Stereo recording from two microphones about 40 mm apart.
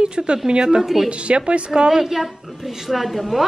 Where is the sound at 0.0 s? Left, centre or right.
Right.